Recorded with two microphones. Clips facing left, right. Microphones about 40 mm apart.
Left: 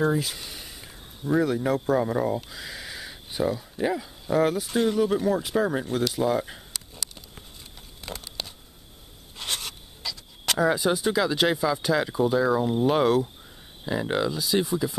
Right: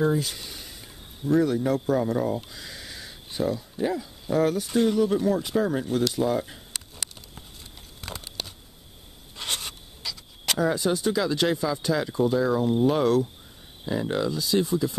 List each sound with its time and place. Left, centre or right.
0.0 s speech: centre
10.6 s speech: centre
14.0 s speech: left
14.4 s speech: centre